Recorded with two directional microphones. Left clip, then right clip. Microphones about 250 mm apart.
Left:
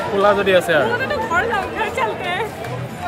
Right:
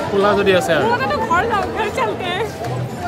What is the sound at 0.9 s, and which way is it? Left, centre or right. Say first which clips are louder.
Chatter: right 2 dB; centre.